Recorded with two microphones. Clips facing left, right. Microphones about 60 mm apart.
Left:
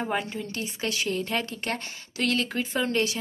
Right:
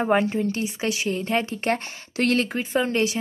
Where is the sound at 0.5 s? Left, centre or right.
Right.